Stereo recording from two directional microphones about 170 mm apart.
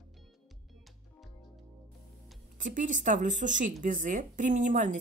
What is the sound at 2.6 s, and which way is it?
A woman's voice, 50° right (ahead or behind).